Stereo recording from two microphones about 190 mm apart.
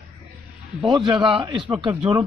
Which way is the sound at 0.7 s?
25° right (ahead or behind).